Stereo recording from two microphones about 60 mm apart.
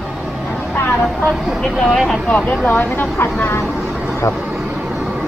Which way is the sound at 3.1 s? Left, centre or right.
Left.